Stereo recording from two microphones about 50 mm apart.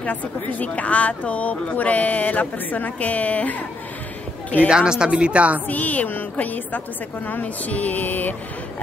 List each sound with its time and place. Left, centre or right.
0.0 s a woman's voice: left
4.6 s speech: centre
5.7 s a woman's voice: left